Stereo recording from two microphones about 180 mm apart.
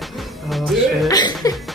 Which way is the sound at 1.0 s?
20° left (ahead or behind).